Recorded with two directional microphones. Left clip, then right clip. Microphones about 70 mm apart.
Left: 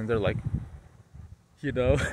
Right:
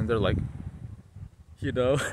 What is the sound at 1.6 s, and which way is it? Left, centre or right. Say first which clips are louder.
Speech: even; right.